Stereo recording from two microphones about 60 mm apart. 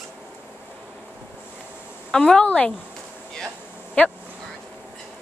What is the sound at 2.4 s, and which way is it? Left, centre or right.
Speech, left.